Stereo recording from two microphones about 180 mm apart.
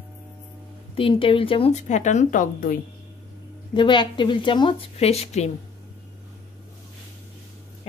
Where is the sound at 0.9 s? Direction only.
30° left (ahead or behind); by 2.8 s 50° left (ahead or behind).